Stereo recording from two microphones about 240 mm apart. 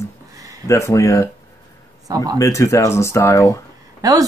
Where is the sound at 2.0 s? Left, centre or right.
Centre.